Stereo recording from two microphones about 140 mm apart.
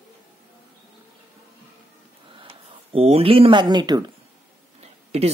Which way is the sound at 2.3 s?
40° right (ahead or behind).